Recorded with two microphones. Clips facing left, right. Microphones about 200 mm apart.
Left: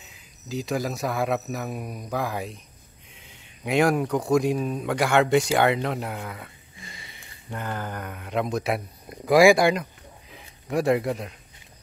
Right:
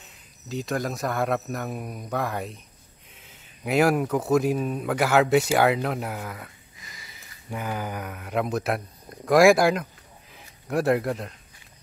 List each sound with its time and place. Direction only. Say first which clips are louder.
0.0 s speech: left 1 dB; centre (ahead or behind)
6.8 s a sound: left 4 dB; 30° left (ahead or behind)
7.1 s speech: right 3 dB; 5° right (ahead or behind)